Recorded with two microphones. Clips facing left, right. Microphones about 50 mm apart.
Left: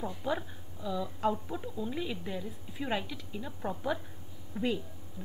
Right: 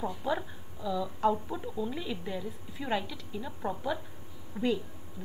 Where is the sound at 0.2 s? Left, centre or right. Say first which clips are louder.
Left 1 dB; centre.